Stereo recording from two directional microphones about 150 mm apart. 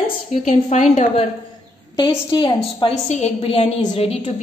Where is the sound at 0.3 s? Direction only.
55° left (ahead or behind).